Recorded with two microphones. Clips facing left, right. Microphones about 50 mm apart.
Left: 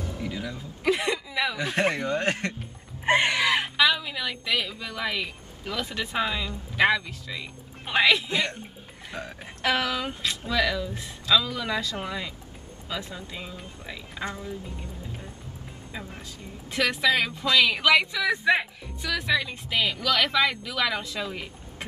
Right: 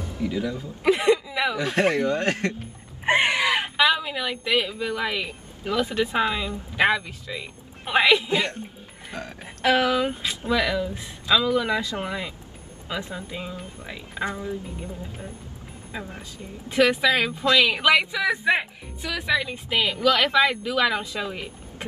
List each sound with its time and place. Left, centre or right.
0.3 s speech: centre
0.8 s speech: centre
1.6 s speech: centre
3.1 s a sound: centre
3.4 s speech: centre
9.1 s speech: centre
9.6 s speech: centre
16.6 s speech: centre